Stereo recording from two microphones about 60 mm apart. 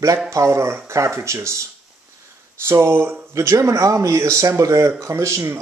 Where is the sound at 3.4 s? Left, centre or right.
Right.